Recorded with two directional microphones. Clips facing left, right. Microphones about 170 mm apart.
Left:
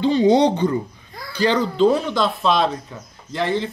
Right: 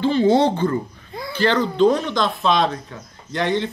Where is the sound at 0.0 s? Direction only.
15° left (ahead or behind).